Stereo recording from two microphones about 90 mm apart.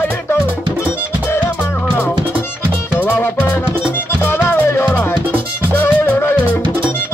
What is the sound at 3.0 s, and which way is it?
Music, 20° left (ahead or behind).